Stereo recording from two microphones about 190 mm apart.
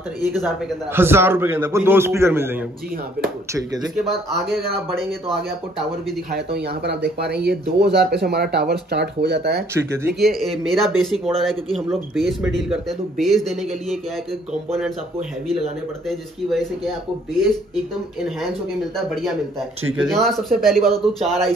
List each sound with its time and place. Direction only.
0.3 s speech: centre (ahead or behind)
0.9 s a man's voice: 10° right (ahead or behind)
3.8 s speech: centre (ahead or behind)
6.3 s speech: 60° right (ahead or behind)
10.1 s speech: centre (ahead or behind)
16.1 s speech: centre (ahead or behind)
18.9 s speech: centre (ahead or behind)